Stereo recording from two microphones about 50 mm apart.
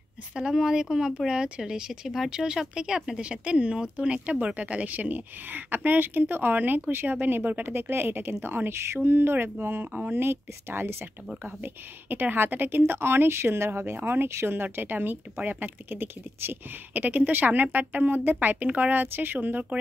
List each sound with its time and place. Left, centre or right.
0.3 s a woman's voice: centre; by 16.5 s right
16.9 s speech: right